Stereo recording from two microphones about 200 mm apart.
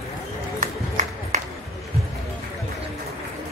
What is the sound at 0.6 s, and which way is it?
Music, 35° right (ahead or behind).